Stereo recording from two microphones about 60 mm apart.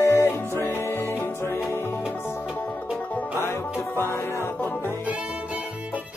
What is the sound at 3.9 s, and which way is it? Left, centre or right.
Music, left.